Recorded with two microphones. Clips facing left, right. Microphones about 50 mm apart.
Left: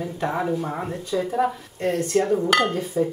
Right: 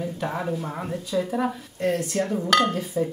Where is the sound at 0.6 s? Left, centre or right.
Centre.